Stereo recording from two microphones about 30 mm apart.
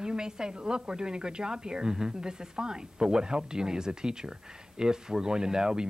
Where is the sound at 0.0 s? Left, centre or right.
Right.